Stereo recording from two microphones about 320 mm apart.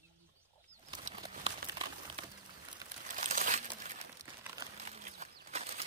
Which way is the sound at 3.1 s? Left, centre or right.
Right.